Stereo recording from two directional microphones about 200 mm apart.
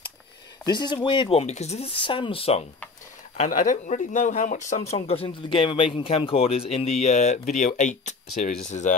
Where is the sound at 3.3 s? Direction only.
40° left (ahead or behind).